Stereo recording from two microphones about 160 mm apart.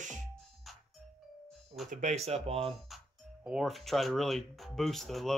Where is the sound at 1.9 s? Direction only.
50° right (ahead or behind).